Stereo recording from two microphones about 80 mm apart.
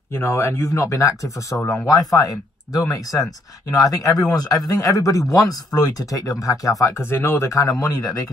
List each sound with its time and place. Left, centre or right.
0.1 s speech: left
7.5 s speech: left